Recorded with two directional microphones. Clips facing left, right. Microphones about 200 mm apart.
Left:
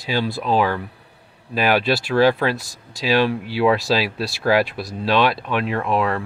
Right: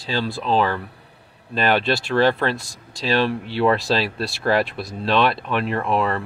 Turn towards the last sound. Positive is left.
turn(degrees=0)  # may be behind; listen again after turning